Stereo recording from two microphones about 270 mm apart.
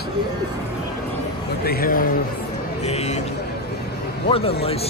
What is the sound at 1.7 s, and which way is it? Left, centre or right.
A man's voice, left.